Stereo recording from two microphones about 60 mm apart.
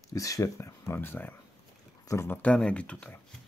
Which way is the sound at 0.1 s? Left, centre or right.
Left.